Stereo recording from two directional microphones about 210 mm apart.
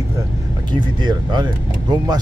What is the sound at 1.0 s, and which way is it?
Speech, 20° right (ahead or behind).